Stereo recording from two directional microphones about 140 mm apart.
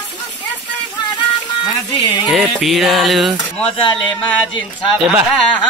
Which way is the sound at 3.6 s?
40° left (ahead or behind).